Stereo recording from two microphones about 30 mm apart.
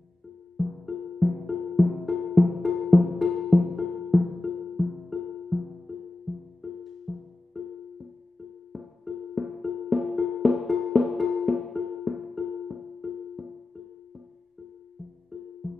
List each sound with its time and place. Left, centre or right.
0.6 s music: centre
8.7 s music: centre
15.6 s music: centre